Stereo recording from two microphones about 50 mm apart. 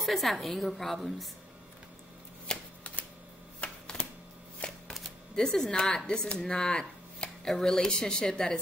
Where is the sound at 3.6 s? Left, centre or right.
Centre.